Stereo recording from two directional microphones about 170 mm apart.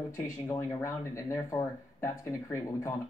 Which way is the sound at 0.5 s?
15° left (ahead or behind).